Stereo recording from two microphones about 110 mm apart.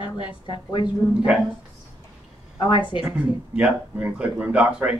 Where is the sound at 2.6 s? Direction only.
45° left (ahead or behind).